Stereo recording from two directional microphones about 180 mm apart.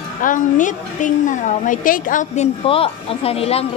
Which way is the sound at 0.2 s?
45° left (ahead or behind).